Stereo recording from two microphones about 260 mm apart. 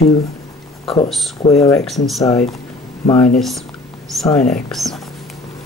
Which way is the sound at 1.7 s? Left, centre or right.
Centre.